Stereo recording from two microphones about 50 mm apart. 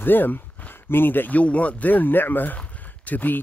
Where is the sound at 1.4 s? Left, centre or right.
Left.